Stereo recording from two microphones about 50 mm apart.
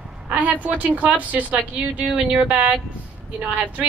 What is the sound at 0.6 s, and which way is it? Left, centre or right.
A woman's voice, right.